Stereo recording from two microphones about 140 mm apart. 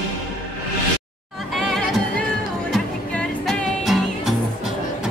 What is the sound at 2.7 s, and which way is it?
Music, centre (ahead or behind).